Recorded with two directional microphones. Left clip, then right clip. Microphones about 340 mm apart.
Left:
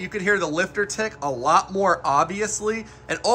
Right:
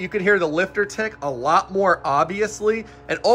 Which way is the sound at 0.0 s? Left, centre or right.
Centre.